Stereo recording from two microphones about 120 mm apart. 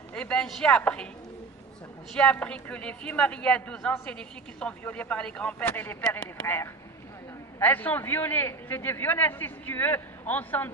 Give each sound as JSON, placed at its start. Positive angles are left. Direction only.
{"t": 0.1, "sound": "a woman's voice", "side_deg": 10}
{"t": 2.1, "sound": "a man's voice", "side_deg": 10}